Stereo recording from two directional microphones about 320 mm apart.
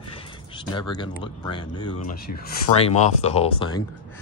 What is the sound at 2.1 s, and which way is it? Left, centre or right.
Speech, left.